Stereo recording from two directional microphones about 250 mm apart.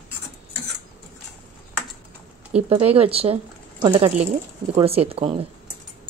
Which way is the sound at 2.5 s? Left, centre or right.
Centre.